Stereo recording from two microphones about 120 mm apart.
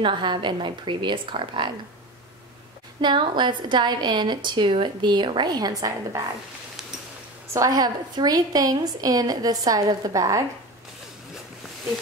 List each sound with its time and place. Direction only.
0.0 s a woman's voice: 40° right (ahead or behind)
3.0 s a woman's voice: 40° right (ahead or behind)
7.5 s a woman's voice: 30° right (ahead or behind)